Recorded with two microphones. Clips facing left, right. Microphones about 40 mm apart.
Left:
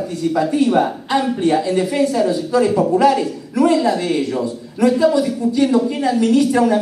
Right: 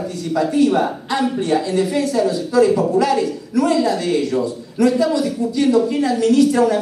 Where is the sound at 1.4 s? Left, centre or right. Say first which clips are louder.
Left 2 dB; left.